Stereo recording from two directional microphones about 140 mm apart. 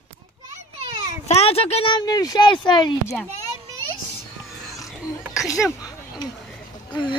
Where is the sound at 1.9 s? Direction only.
25° left (ahead or behind).